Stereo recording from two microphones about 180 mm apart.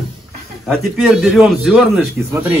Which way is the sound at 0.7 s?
Centre (ahead or behind).